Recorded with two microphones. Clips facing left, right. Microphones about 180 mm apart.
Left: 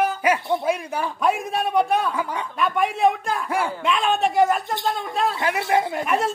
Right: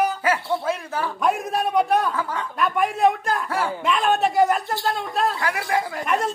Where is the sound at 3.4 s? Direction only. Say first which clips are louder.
Left 1 dB; 15° left (ahead or behind).